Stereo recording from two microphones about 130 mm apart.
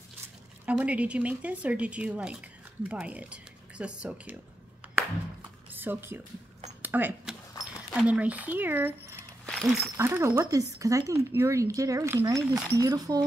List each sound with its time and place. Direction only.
0.7 s speech: 10° right (ahead or behind)
5.8 s speech: 15° right (ahead or behind)
6.8 s a sound: 15° right (ahead or behind)
7.6 s speech: 5° right (ahead or behind)
9.5 s a sound: 5° left (ahead or behind)
9.9 s speech: 20° right (ahead or behind)